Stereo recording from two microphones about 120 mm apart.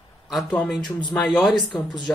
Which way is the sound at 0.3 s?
Centre (ahead or behind).